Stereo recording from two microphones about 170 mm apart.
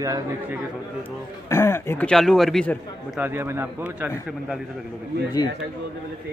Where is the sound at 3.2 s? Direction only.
15° right (ahead or behind).